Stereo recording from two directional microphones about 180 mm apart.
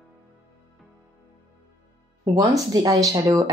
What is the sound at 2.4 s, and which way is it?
Speech, 20° right (ahead or behind).